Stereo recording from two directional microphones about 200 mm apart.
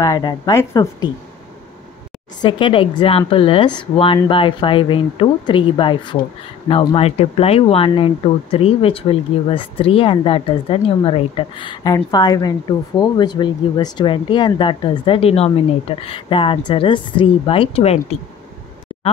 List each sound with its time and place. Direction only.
0.0 s speech: 20° left (ahead or behind)
2.4 s speech: 25° left (ahead or behind)